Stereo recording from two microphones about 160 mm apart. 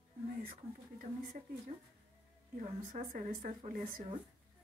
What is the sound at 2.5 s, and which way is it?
Speech, 55° right (ahead or behind).